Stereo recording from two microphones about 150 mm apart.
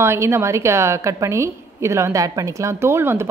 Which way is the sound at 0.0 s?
15° right (ahead or behind).